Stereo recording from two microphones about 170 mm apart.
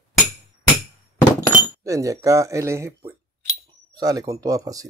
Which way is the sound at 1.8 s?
20° right (ahead or behind).